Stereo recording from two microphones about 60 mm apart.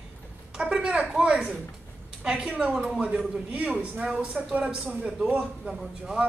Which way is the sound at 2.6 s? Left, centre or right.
Right.